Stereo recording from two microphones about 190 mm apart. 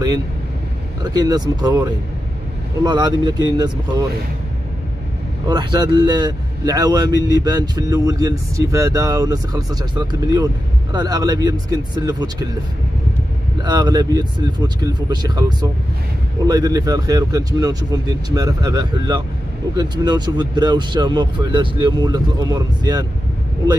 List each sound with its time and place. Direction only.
1.0 s speech: 20° right (ahead or behind)
5.5 s speech: 25° right (ahead or behind)
13.6 s speech: 20° right (ahead or behind)